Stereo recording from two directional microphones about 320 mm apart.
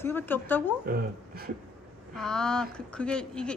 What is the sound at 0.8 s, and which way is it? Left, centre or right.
Speech, right.